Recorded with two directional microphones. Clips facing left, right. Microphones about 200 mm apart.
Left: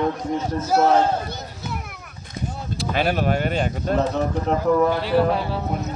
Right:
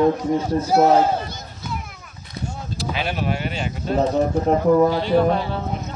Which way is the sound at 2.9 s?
45° left (ahead or behind).